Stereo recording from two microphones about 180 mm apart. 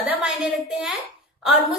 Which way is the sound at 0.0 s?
5° right (ahead or behind).